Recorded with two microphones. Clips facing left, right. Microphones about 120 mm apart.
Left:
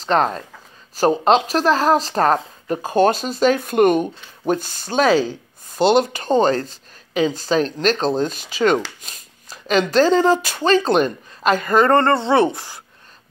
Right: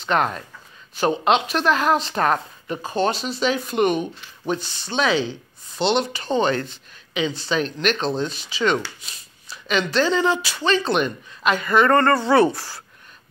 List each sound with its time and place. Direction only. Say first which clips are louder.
0.0 s speech: left 3 dB; 35° left (ahead or behind)